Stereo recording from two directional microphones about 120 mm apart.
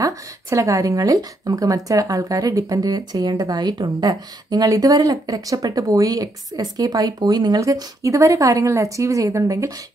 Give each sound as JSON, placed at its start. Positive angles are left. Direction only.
{"t": 0.0, "sound": "speech", "side_deg": -25}